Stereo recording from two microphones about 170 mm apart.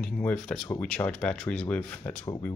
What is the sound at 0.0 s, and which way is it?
Speech, 5° left (ahead or behind).